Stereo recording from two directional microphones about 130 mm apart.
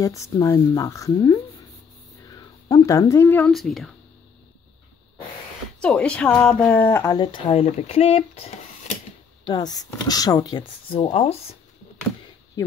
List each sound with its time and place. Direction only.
0.0 s speech: 25° left (ahead or behind)
2.2 s a sound: 30° left (ahead or behind)
3.4 s speech: centre (ahead or behind)
5.8 s speech: 10° left (ahead or behind)
7.2 s speech: 35° left (ahead or behind)
7.6 s speech: 55° left (ahead or behind)
9.4 s speech: 30° left (ahead or behind); by 11.3 s 55° left (ahead or behind)
12.6 s speech: 30° left (ahead or behind)